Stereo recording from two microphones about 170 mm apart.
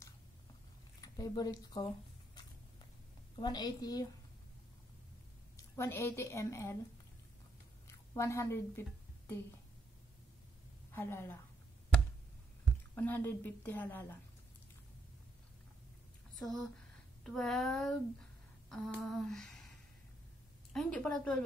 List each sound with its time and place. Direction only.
1.0 s a woman's voice: 20° left (ahead or behind)
5.8 s a woman's voice: 15° left (ahead or behind)
8.1 s a woman's voice: 15° left (ahead or behind)
10.9 s a woman's voice: 15° left (ahead or behind)
12.9 s a woman's voice: 10° left (ahead or behind)
16.3 s speech: centre (ahead or behind)
18.7 s a sound: centre (ahead or behind)
20.7 s speech: 5° left (ahead or behind)